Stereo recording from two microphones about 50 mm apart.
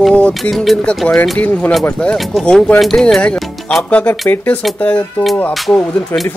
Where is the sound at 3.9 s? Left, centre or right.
Left.